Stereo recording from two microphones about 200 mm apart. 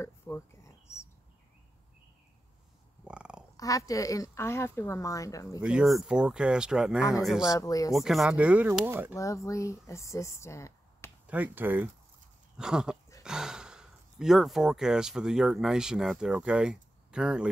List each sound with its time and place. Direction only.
0.0 s a sound: 15° left (ahead or behind)
3.1 s a sound: 5° right (ahead or behind)
3.5 s a woman's voice: 15° left (ahead or behind)
5.6 s speech: 5° right (ahead or behind)
7.4 s a woman's voice: 15° left (ahead or behind)
7.9 s speech: centre (ahead or behind)
9.1 s a woman's voice: 15° left (ahead or behind)
11.2 s speech: 10° right (ahead or behind)